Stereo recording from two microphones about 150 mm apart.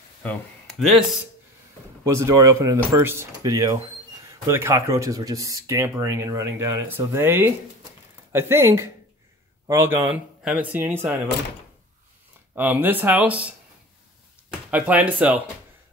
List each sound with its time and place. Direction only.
0.2 s a sound: 10° left (ahead or behind)
0.7 s speech: centre (ahead or behind)
2.0 s speech: 20° right (ahead or behind)
12.5 s speech: 10° right (ahead or behind)
14.7 s speech: 10° right (ahead or behind)